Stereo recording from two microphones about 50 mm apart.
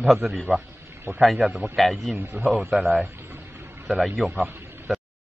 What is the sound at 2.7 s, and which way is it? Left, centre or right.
Speech, centre.